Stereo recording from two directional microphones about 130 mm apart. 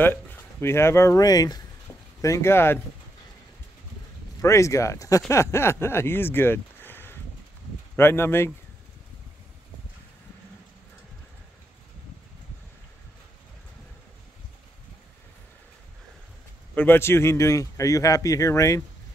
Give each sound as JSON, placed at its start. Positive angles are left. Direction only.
{"t": 0.0, "sound": "speech", "side_deg": 15}
{"t": 4.4, "sound": "speech", "side_deg": 25}
{"t": 16.7, "sound": "speech", "side_deg": 15}